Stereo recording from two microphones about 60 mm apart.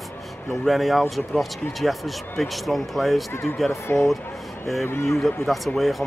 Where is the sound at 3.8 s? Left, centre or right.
Left.